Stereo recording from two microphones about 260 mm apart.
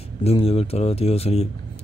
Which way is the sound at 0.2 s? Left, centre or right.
Left.